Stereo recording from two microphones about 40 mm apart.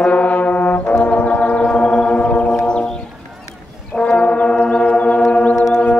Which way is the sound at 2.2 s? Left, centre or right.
Left.